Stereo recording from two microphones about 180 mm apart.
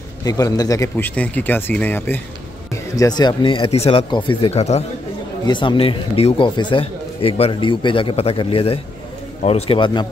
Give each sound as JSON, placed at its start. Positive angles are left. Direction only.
{"t": 0.2, "sound": "speech", "side_deg": 20}
{"t": 5.4, "sound": "speech", "side_deg": 25}